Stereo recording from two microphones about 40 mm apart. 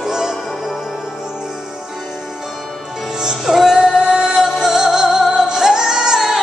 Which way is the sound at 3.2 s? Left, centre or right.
Centre.